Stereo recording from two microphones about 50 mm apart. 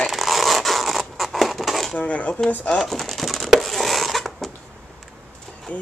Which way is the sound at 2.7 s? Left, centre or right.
Centre.